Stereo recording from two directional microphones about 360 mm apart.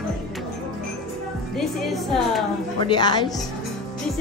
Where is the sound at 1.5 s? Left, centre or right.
Centre.